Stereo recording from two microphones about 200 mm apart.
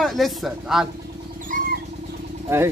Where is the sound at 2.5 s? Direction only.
10° right (ahead or behind).